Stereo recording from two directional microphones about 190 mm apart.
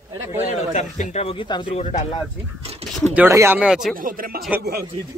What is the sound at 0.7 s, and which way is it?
Speech, 35° left (ahead or behind).